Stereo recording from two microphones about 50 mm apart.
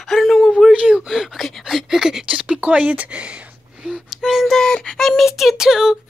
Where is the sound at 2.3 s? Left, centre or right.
Right.